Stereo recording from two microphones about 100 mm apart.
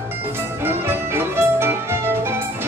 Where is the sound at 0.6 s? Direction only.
25° right (ahead or behind).